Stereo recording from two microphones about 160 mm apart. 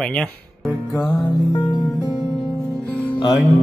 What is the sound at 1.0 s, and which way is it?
Music, 25° left (ahead or behind).